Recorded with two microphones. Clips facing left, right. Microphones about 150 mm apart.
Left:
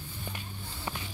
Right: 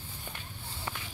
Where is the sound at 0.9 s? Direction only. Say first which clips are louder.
Left 2 dB; 20° left (ahead or behind).